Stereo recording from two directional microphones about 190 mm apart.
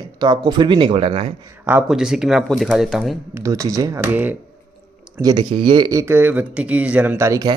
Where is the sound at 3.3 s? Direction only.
15° right (ahead or behind).